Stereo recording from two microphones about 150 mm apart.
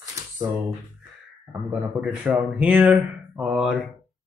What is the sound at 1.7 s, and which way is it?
Speech, 5° right (ahead or behind).